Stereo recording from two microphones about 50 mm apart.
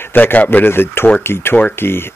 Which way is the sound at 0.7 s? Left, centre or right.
Left.